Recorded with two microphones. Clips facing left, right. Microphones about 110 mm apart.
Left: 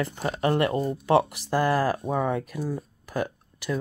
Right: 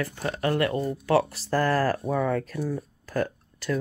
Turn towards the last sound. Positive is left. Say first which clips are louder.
# right 1 dB
turn(degrees=15)  # may be behind; listen again after turning